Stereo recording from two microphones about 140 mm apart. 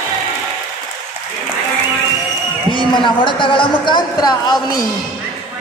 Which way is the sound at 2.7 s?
35° left (ahead or behind).